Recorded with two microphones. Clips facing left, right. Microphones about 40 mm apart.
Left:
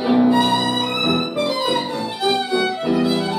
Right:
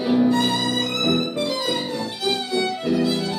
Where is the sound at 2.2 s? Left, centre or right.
Centre.